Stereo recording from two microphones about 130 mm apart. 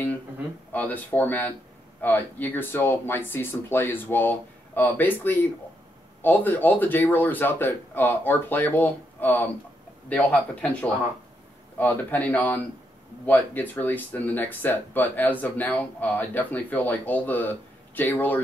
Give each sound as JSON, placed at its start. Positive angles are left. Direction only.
{"t": 0.7, "sound": "speech", "side_deg": 15}